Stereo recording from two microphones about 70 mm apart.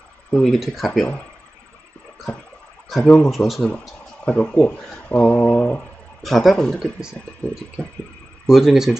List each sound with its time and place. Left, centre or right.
0.4 s speech: centre
2.9 s speech: centre
3.3 s speech: centre
4.2 s speech: centre
6.2 s speech: centre
6.8 s speech: centre
8.5 s speech: centre